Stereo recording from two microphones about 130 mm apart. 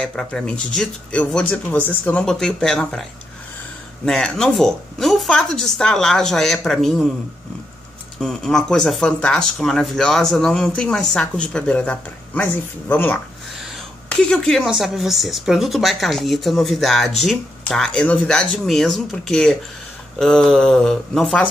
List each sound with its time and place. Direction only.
0.0 s speech: 5° left (ahead or behind)
8.2 s speech: 5° left (ahead or behind)
14.2 s speech: 5° left (ahead or behind)